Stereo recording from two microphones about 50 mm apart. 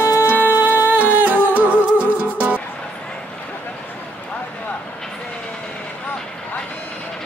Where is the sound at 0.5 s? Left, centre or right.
Right.